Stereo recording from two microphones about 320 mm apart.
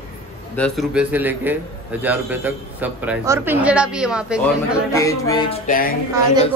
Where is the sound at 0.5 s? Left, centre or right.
Centre.